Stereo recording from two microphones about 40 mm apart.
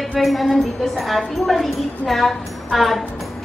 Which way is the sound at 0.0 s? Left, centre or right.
Centre.